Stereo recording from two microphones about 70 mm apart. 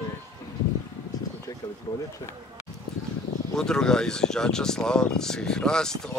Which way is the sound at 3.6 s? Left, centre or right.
Centre.